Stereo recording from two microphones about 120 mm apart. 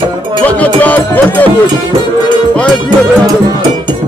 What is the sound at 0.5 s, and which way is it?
Speech, 15° left (ahead or behind).